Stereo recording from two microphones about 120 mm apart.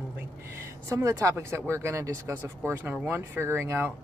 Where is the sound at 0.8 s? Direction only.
25° right (ahead or behind).